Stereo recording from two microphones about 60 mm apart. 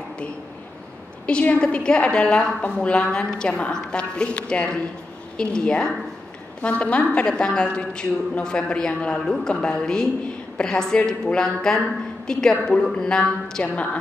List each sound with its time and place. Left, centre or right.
1.2 s a woman's voice: left